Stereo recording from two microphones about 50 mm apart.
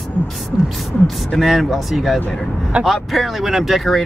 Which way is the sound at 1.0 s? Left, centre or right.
Centre.